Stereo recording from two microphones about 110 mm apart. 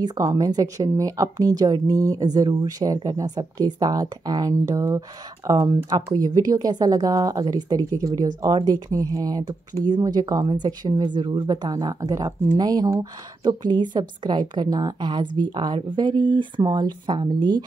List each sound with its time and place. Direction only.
0.0 s a woman's voice: 35° right (ahead or behind)
12.0 s a woman's voice: 30° right (ahead or behind)